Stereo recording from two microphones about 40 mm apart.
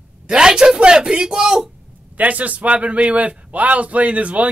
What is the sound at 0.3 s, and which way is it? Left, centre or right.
Speech, centre.